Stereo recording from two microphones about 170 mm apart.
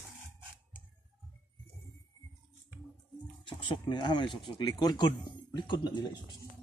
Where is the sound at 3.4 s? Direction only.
30° left (ahead or behind).